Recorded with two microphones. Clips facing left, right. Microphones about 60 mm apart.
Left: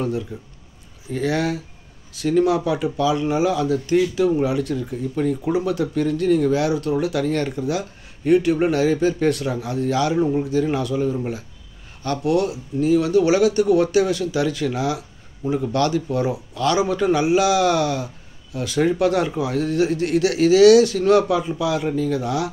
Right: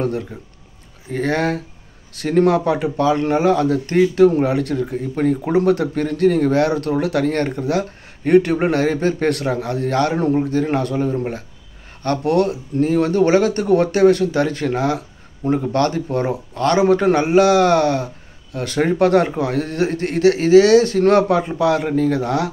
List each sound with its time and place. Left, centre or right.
0.0 s speech: right